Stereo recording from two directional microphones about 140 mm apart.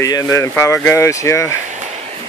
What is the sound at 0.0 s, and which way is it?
Speech, 25° left (ahead or behind).